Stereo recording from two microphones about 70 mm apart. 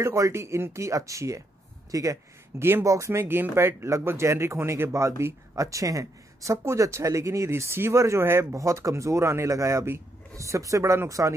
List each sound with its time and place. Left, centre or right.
0.0 s speech: right